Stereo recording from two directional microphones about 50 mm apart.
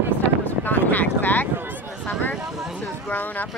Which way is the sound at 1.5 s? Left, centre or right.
Right.